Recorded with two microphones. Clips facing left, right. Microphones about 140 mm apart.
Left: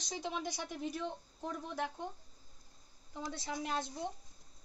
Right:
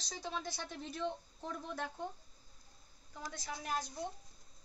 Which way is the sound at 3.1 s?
25° left (ahead or behind).